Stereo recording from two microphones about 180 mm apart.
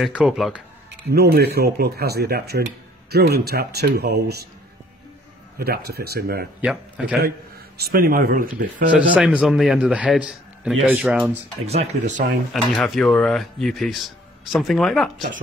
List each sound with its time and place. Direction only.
0.0 s speech: 5° right (ahead or behind)
1.1 s speech: 60° right (ahead or behind)
5.6 s speech: 60° right (ahead or behind)
6.6 s a man's voice: 5° right (ahead or behind)
7.2 s speech: 60° right (ahead or behind)
9.1 s speech: 5° right (ahead or behind)
11.6 s speech: 35° right (ahead or behind)
12.7 s speech: centre (ahead or behind)